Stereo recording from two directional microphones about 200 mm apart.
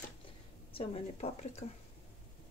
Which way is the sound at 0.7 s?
30° left (ahead or behind).